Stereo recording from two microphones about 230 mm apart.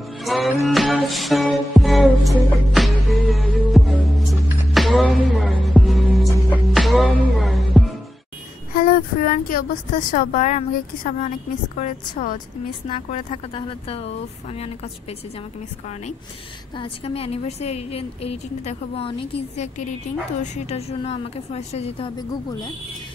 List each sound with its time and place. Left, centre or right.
0.2 s music: centre
8.7 s a woman's voice: left
16.7 s a woman's voice: left